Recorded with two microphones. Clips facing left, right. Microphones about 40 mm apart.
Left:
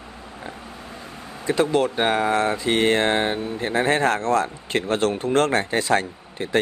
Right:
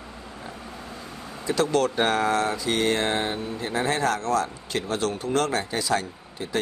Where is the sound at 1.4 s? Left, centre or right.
Left.